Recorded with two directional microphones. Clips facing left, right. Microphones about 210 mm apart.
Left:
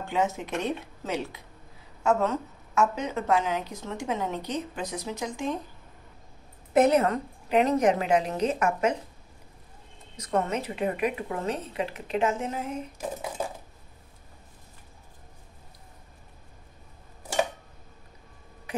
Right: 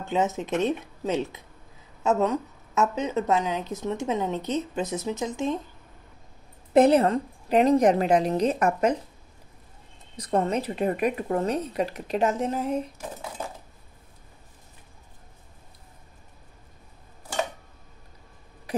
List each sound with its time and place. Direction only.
0.0 s a woman's voice: 20° right (ahead or behind)
6.7 s a woman's voice: 30° right (ahead or behind)
10.1 s a woman's voice: 35° right (ahead or behind)
18.7 s a sound: 35° right (ahead or behind)